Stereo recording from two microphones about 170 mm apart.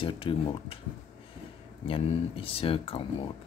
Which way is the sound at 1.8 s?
30° left (ahead or behind).